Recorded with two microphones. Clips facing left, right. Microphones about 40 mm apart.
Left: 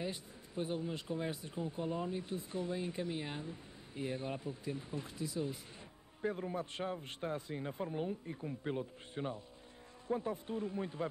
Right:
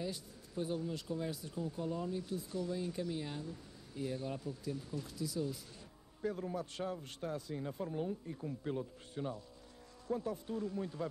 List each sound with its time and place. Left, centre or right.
0.0 s speech: left